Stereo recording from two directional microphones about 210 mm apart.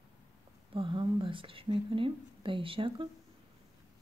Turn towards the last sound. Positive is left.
turn(degrees=-25)  # may be behind; listen again after turning